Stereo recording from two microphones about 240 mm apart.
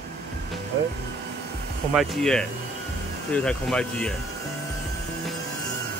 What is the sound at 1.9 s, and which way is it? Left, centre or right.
Speech, centre.